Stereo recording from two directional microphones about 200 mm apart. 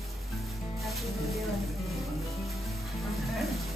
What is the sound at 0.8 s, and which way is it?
Music, centre (ahead or behind).